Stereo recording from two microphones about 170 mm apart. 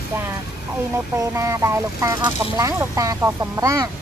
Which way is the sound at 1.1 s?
20° right (ahead or behind).